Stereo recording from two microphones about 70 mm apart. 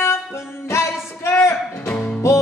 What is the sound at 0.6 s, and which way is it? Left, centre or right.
Female singing, left.